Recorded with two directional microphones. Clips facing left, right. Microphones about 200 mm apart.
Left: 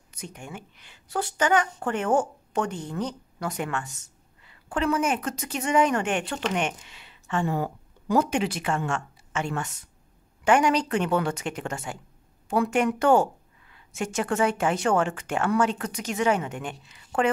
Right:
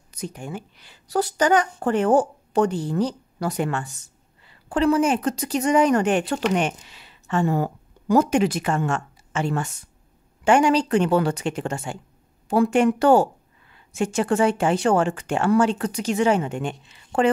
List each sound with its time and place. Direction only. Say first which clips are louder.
0.1 s a woman's voice: right 7 dB; 35° right (ahead or behind)